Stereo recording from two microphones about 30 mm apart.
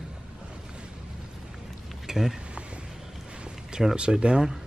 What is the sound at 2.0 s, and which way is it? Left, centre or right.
Speech, centre.